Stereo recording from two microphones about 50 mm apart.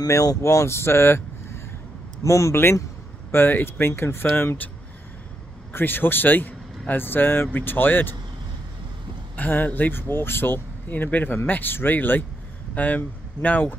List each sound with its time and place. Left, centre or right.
0.1 s speech: left
2.2 s speech: left
2.5 s speech: left
5.7 s speech: left
9.4 s speech: left